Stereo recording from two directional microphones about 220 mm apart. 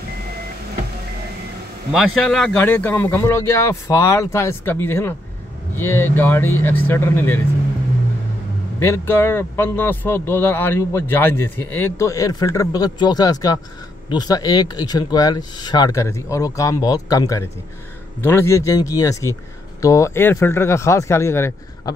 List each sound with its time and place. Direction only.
1.9 s a man's voice: centre (ahead or behind)
8.7 s a man's voice: 10° left (ahead or behind)